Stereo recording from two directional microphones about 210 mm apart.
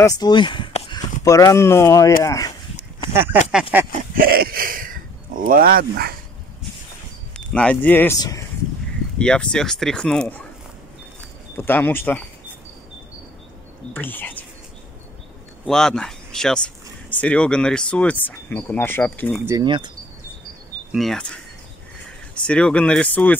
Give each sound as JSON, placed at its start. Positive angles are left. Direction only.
{"t": 0.0, "sound": "speech", "side_deg": 15}
{"t": 3.1, "sound": "speech", "side_deg": -10}
{"t": 4.1, "sound": "a sound", "side_deg": -45}
{"t": 7.3, "sound": "speech", "side_deg": 5}
{"t": 11.5, "sound": "speech", "side_deg": 10}
{"t": 13.9, "sound": "speech", "side_deg": 10}
{"t": 15.6, "sound": "speech", "side_deg": 0}
{"t": 19.4, "sound": "speech", "side_deg": -20}
{"t": 20.9, "sound": "speech", "side_deg": 0}